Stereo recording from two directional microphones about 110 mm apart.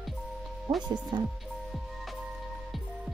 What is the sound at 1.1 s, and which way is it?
Speech, 35° right (ahead or behind).